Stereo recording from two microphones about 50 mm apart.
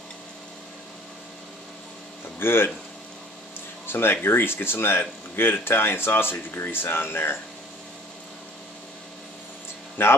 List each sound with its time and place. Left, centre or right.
2.3 s speech: left
3.8 s speech: left
10.0 s speech: left